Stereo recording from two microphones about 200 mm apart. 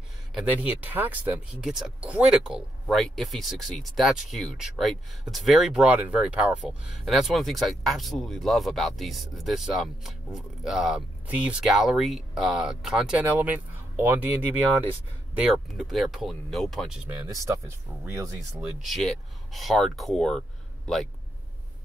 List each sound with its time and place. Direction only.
0.3 s speech: 5° right (ahead or behind)
15.3 s speech: 5° right (ahead or behind)
18.0 s speech: 15° right (ahead or behind)
18.6 s speech: centre (ahead or behind)